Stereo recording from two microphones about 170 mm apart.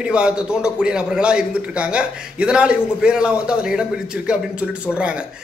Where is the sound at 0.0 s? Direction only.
5° right (ahead or behind).